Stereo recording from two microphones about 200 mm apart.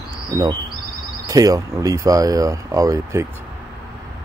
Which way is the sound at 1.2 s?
15° right (ahead or behind).